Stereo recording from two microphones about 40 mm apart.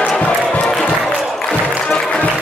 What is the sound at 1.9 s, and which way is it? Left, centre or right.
Music, centre.